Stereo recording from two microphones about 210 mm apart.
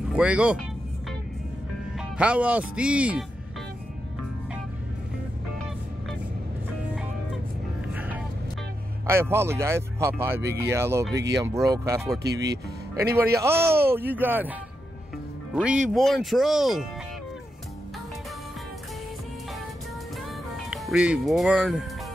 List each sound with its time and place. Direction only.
0.1 s speech: 5° right (ahead or behind)
2.0 s speech: 5° right (ahead or behind)
9.0 s speech: 10° right (ahead or behind)
12.2 s speech: 50° right (ahead or behind)
13.1 s speech: 15° right (ahead or behind)
15.5 s speech: 5° right (ahead or behind)
20.7 s speech: 5° right (ahead or behind)